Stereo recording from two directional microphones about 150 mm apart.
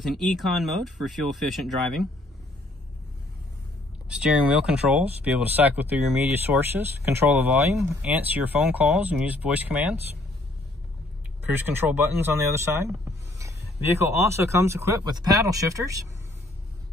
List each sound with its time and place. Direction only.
0.0 s speech: centre (ahead or behind)
4.1 s speech: 5° right (ahead or behind)
11.4 s speech: 15° right (ahead or behind)